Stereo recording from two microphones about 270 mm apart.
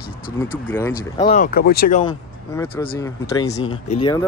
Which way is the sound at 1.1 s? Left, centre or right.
Left.